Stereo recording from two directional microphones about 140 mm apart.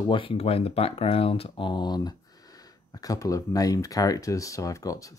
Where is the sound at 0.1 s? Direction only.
40° left (ahead or behind).